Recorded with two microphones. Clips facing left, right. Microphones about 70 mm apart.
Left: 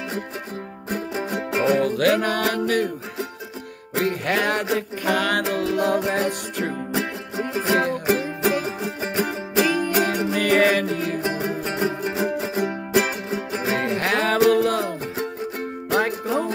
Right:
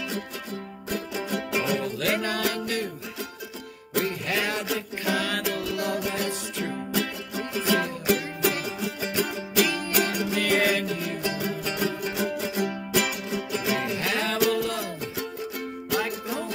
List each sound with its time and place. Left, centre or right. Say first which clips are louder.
0.8 s music: left 4 dB; left
1.8 s music: left 8 dB; left
5.4 s music: left 6 dB; left
13.9 s music: left 6 dB; left